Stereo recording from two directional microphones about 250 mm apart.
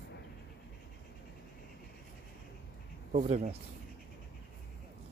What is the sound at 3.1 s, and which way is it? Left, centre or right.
Speech, right.